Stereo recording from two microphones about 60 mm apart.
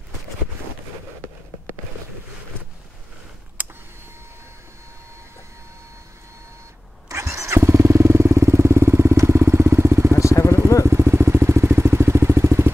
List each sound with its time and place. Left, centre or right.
3.6 s vehicle: right
7.1 s vehicle: right
10.1 s vehicle: left
10.9 s vehicle: right